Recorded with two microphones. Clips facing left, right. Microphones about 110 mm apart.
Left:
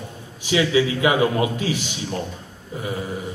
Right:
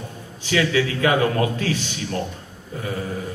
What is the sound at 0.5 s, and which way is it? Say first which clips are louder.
A man's voice: left 2 dB; 20° left (ahead or behind).